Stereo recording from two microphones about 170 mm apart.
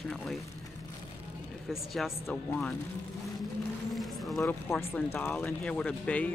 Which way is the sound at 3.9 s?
Centre (ahead or behind).